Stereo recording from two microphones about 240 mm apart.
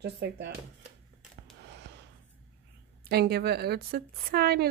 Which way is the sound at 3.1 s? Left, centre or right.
Right.